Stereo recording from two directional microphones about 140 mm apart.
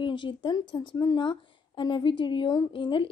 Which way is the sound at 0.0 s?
35° left (ahead or behind).